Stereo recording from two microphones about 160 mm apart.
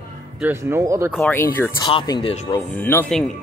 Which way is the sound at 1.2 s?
15° left (ahead or behind).